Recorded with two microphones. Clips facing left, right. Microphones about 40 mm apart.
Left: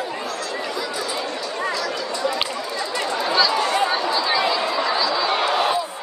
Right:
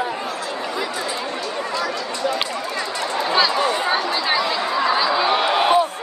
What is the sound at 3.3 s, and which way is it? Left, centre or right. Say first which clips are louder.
Chatter: right 1 dB; right.